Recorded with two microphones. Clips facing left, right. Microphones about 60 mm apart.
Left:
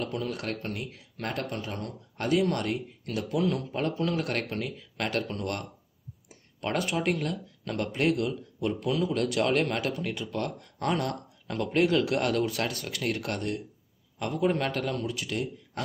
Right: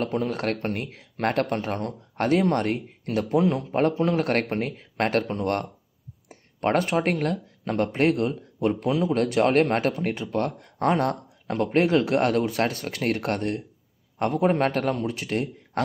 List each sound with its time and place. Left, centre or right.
0.0 s speech: right